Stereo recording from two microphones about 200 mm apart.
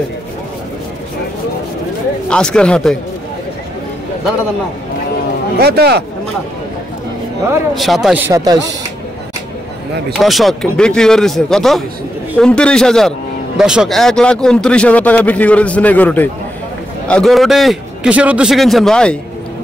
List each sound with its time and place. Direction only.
2.2 s a man's voice: 5° left (ahead or behind)
5.6 s speech: 55° right (ahead or behind)
7.7 s a man's voice: centre (ahead or behind)
8.3 s speech: 15° right (ahead or behind)
10.1 s a man's voice: centre (ahead or behind)